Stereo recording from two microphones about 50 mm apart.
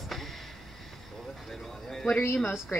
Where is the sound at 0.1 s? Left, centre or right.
Centre.